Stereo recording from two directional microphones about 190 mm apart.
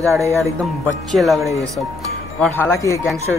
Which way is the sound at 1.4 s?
15° right (ahead or behind).